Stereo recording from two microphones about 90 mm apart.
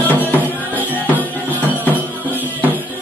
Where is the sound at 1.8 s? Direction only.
20° right (ahead or behind).